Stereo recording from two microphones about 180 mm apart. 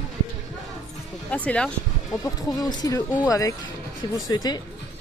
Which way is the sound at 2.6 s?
20° left (ahead or behind).